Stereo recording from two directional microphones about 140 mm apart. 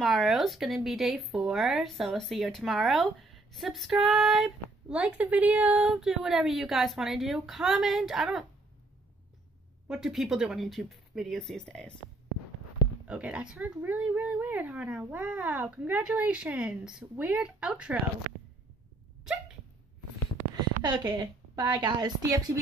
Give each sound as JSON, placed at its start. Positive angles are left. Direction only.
{"t": 0.0, "sound": "speech", "side_deg": 0}
{"t": 9.8, "sound": "speech", "side_deg": 0}
{"t": 13.0, "sound": "speech", "side_deg": -10}
{"t": 20.8, "sound": "a woman's voice", "side_deg": -30}